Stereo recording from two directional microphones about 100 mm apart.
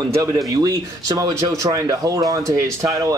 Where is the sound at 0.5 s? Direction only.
35° right (ahead or behind).